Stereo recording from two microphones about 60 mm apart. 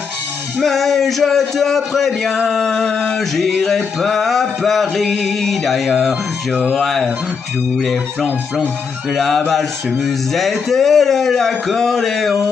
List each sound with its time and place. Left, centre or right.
0.6 s a man's voice: centre